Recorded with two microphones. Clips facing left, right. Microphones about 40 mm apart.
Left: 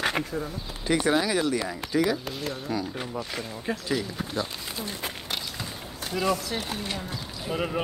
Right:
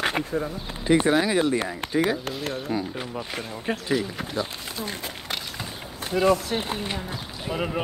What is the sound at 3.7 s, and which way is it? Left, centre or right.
Speech, right.